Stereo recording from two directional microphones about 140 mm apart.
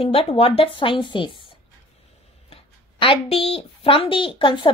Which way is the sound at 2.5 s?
40° left (ahead or behind).